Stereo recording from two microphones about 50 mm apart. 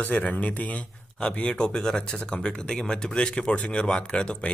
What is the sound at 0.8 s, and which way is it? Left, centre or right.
Speech, centre.